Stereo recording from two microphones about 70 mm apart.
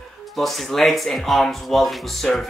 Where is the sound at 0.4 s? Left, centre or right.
Centre.